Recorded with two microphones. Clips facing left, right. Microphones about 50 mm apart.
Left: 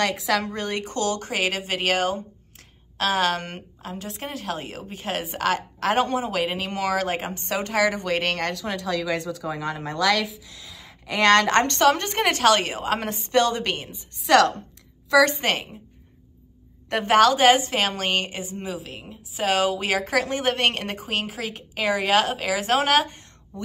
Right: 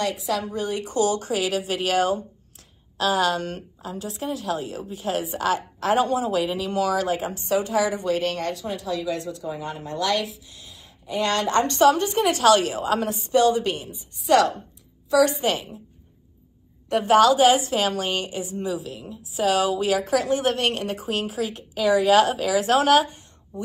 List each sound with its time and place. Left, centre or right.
0.0 s a woman's voice: left
10.7 s a woman's voice: left
15.2 s a woman's voice: left
16.9 s a woman's voice: left
22.9 s a woman's voice: left
23.5 s a sound: left